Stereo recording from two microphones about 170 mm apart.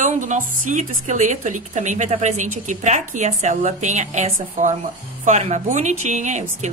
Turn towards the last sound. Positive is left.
turn(degrees=-45)  # may be behind; listen again after turning